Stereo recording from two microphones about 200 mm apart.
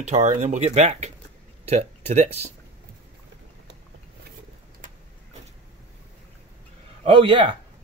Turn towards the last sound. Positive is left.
turn(degrees=-25)  # may be behind; listen again after turning